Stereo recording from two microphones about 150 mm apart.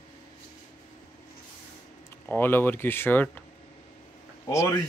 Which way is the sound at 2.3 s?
15° left (ahead or behind).